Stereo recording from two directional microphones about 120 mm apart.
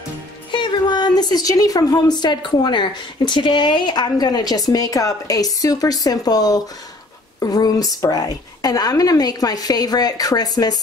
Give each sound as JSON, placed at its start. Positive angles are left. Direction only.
{"t": 0.5, "sound": "a woman's voice", "side_deg": 40}